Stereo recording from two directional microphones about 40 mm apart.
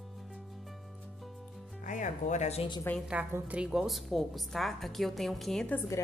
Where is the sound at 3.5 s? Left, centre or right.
Right.